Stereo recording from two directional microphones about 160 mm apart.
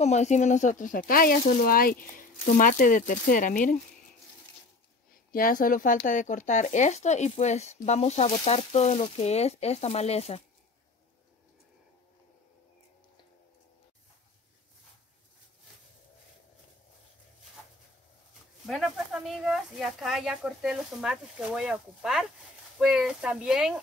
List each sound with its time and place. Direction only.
0.0 s speech: 45° left (ahead or behind)
5.3 s speech: 60° left (ahead or behind); by 10.4 s 40° left (ahead or behind)
18.7 s speech: centre (ahead or behind)